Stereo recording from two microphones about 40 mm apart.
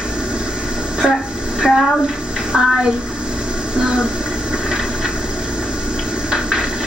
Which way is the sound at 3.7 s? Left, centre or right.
Right.